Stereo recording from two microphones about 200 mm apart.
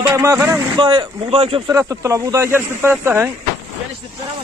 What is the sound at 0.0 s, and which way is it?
Speech, 15° right (ahead or behind).